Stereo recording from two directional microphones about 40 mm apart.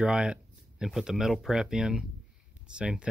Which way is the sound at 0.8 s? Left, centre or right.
Centre.